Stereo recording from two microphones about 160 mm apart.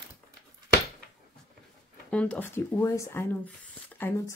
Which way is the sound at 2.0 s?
10° left (ahead or behind).